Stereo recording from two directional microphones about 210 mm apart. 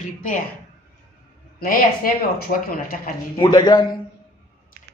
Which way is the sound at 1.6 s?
40° left (ahead or behind).